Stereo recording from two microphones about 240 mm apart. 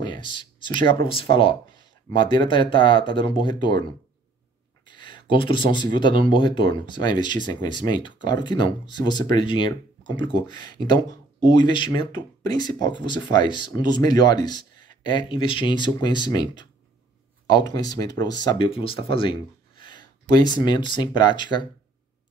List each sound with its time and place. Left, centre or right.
0.0 s speech: centre
4.8 s speech: centre